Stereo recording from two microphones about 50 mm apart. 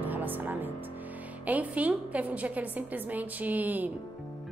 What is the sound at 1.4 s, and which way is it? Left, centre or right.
A woman's voice, right.